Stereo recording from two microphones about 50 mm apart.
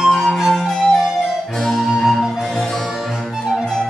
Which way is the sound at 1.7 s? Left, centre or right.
Centre.